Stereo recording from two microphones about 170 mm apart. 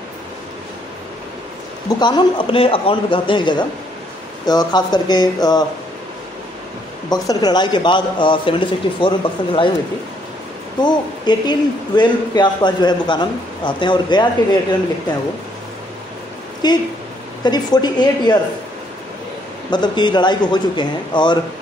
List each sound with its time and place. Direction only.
2.0 s speech: 25° left (ahead or behind)
7.1 s speech: 25° left (ahead or behind)
10.8 s speech: 25° left (ahead or behind)
16.6 s speech: 25° left (ahead or behind)
19.7 s speech: 25° left (ahead or behind)